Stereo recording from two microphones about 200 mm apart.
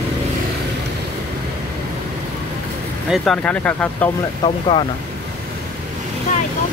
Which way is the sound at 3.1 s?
5° left (ahead or behind).